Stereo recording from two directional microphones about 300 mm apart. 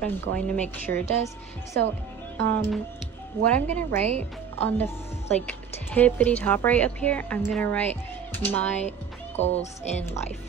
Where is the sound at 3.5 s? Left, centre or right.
Centre.